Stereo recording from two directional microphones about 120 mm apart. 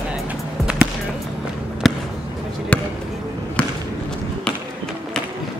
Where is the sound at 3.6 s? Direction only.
10° left (ahead or behind).